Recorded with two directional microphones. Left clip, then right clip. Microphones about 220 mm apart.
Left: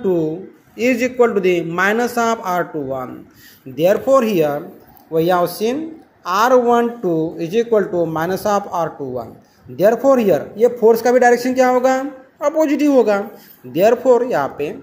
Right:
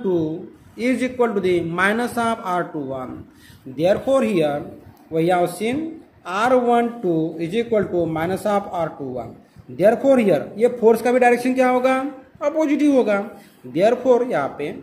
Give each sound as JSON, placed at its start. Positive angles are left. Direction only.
{"t": 0.8, "sound": "speech", "side_deg": 15}